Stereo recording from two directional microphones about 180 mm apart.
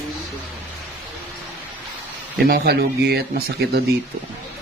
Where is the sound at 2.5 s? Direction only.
60° right (ahead or behind).